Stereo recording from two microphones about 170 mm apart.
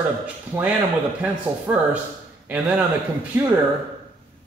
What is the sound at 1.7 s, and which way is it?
A man's voice, 20° right (ahead or behind).